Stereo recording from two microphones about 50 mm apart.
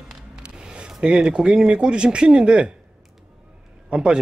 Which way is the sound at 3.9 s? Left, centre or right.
Centre.